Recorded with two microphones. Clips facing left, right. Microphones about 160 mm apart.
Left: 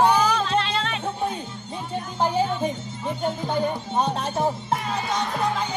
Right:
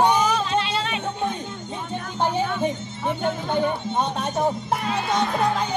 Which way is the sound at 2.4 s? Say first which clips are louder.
Right 1 dB; 75° right (ahead or behind).